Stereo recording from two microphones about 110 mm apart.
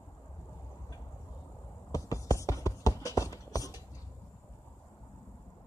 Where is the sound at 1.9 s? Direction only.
30° left (ahead or behind).